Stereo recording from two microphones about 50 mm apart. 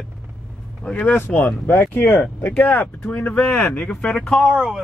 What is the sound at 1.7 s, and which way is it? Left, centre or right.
Speech, left.